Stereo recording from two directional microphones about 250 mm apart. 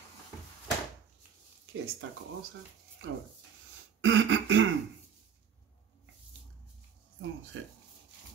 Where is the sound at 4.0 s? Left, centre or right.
Right.